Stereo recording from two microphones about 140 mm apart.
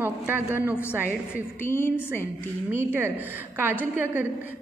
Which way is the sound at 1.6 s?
15° left (ahead or behind).